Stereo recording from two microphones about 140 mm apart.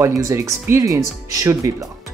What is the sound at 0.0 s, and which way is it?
Speech, 20° right (ahead or behind).